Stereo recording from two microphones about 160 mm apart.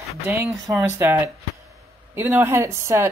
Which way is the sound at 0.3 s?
20° right (ahead or behind).